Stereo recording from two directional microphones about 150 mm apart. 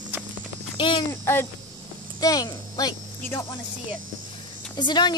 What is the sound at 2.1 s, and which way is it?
Speech, 25° left (ahead or behind).